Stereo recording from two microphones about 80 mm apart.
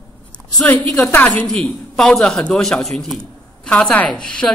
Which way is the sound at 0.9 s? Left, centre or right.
Left.